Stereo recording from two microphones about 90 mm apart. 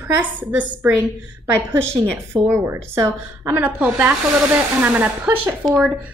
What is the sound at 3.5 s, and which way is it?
A woman's voice, 20° right (ahead or behind).